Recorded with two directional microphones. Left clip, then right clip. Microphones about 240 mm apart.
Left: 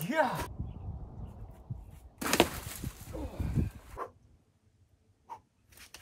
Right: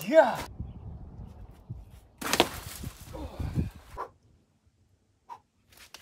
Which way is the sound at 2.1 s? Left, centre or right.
Centre.